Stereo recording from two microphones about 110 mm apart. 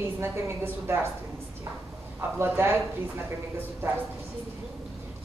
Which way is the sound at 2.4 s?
20° right (ahead or behind).